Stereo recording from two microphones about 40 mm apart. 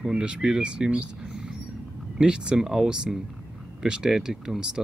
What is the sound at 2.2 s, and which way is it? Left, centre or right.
Speech, right.